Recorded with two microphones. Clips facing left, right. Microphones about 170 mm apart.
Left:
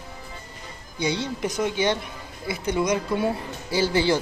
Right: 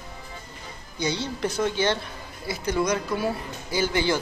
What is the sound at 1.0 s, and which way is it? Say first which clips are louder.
A woman's voice: left 1 dB; 20° left (ahead or behind).